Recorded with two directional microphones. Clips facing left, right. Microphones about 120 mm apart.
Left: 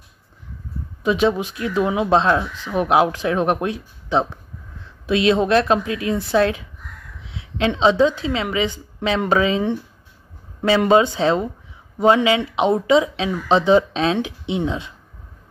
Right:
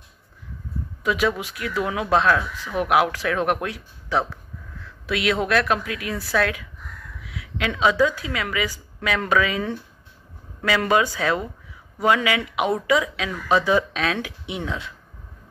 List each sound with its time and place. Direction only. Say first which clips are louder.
1.0 s speech: left 5 dB; 25° left (ahead or behind)